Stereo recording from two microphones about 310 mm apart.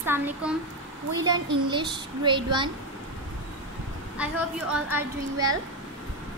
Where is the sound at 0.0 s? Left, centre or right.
Centre.